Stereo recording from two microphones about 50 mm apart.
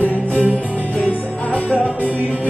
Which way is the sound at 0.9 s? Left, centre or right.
Left.